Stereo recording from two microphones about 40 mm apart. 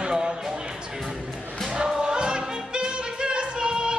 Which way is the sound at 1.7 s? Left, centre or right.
Right.